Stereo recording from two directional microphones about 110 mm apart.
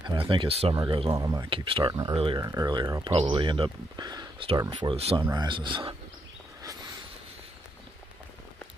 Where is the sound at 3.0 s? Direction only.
50° right (ahead or behind).